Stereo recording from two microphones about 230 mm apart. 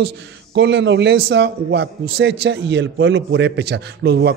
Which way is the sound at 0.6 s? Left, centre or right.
Right.